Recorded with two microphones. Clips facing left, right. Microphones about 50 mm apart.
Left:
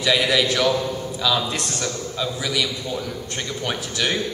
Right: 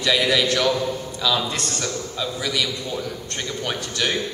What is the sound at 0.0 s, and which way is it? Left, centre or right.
A man's voice, centre.